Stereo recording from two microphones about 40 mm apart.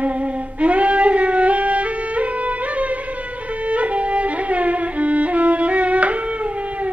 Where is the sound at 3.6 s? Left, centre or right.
Right.